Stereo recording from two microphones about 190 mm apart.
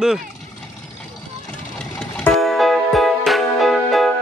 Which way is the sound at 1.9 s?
5° left (ahead or behind).